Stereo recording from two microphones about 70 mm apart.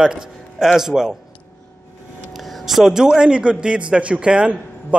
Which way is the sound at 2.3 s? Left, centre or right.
Centre.